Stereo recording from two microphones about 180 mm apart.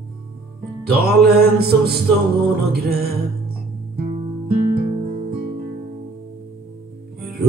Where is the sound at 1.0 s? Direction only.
60° right (ahead or behind).